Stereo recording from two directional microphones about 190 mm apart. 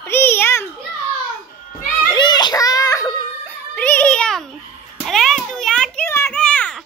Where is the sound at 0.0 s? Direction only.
10° left (ahead or behind).